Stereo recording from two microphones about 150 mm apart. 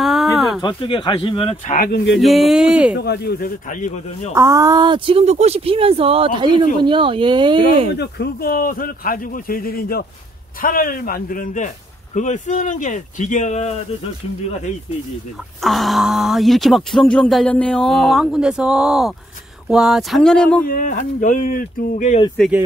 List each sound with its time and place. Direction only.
0.0 s a sound: centre (ahead or behind)
0.6 s speech: 35° left (ahead or behind)
2.1 s speech: centre (ahead or behind)
3.0 s a man's voice: 90° left; by 4.3 s 55° left (ahead or behind)
4.4 s speech: 20° right (ahead or behind)
8.0 s a man's voice: 85° left
10.6 s a man's voice: 70° left (ahead or behind); by 13.7 s 50° left (ahead or behind)
15.6 s speech: centre (ahead or behind)
20.6 s a man's voice: 70° left (ahead or behind)